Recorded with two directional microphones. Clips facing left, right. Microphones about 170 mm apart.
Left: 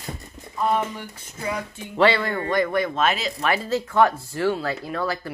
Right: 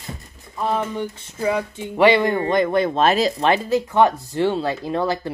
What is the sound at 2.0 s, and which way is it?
Speech, 15° right (ahead or behind).